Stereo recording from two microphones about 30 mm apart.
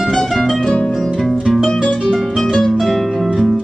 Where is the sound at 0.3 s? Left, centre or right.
Centre.